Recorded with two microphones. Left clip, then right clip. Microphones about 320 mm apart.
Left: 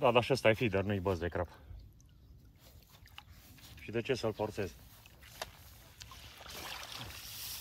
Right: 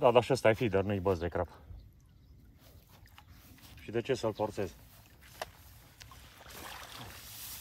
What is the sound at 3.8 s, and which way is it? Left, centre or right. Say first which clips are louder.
Speech: right 2 dB; right.